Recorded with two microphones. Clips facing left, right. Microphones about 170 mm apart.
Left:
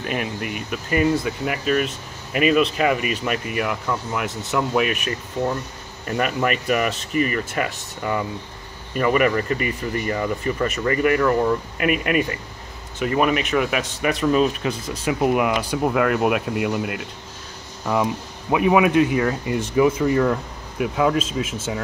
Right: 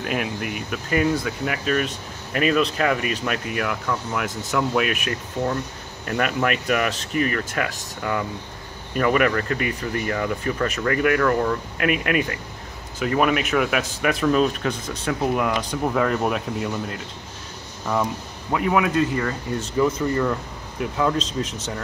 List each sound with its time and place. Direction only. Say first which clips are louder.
0.0 s speech: even; centre (ahead or behind)
18.5 s speech: left 4 dB; 15° left (ahead or behind)